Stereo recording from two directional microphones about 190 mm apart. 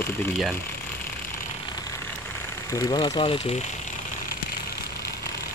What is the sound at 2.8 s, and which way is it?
Speech, 25° left (ahead or behind).